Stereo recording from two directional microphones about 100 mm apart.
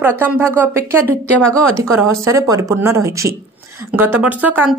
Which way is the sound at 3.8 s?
20° right (ahead or behind).